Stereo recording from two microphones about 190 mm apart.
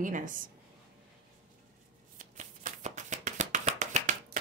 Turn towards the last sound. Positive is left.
turn(degrees=-40)  # may be behind; listen again after turning